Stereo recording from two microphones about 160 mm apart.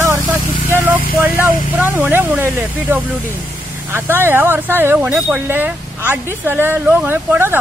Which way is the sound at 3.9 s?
15° right (ahead or behind).